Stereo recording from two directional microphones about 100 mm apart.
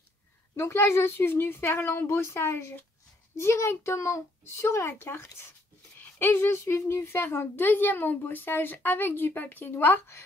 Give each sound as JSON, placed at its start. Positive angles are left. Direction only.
{"t": 0.6, "sound": "speech", "side_deg": 25}